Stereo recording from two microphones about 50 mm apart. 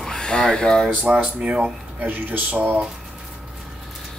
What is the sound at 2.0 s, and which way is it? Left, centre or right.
Speech, right.